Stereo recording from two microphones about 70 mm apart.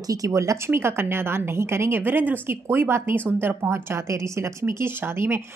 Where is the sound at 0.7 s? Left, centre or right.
Right.